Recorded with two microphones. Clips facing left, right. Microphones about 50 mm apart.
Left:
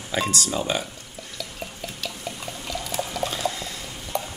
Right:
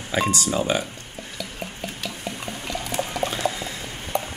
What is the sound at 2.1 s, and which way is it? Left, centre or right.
Water, right.